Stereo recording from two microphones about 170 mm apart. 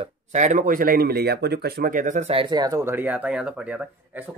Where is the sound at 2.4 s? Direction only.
25° right (ahead or behind); by 3.8 s 5° right (ahead or behind).